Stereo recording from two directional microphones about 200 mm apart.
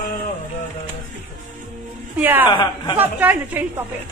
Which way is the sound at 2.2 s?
10° right (ahead or behind).